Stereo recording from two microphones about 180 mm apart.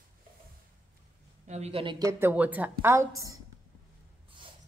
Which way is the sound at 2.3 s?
10° right (ahead or behind).